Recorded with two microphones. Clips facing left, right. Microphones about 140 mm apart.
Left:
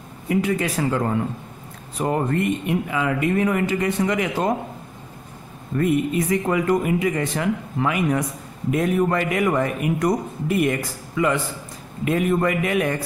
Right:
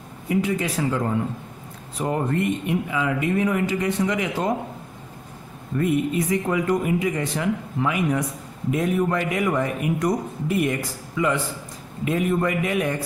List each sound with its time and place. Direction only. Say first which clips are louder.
0.3 s a man's voice: left 2 dB; 65° left (ahead or behind)
5.8 s a man's voice: left 2 dB; 60° left (ahead or behind)